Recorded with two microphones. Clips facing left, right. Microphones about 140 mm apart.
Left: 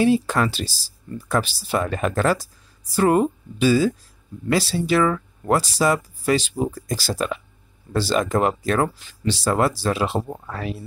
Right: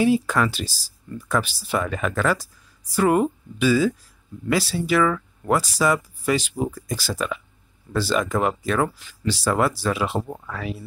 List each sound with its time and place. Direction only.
0.0 s speech: 30° left (ahead or behind)